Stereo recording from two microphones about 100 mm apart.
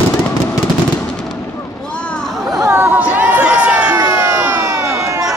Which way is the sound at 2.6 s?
20° right (ahead or behind).